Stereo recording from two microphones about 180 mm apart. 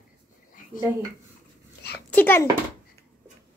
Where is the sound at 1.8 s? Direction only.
65° left (ahead or behind).